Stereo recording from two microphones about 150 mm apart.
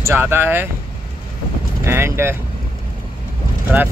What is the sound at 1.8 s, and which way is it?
Speech, 15° right (ahead or behind).